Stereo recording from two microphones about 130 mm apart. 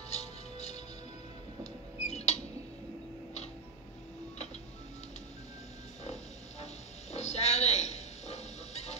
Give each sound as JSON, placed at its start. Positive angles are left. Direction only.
{"t": 0.1, "sound": "music", "side_deg": 55}
{"t": 1.6, "sound": "rodents", "side_deg": 55}
{"t": 6.6, "sound": "a sound", "side_deg": 55}